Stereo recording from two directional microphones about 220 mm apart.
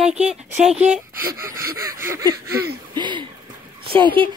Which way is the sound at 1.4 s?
15° right (ahead or behind).